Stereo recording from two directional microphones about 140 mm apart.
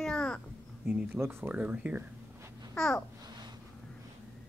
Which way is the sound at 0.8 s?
10° right (ahead or behind).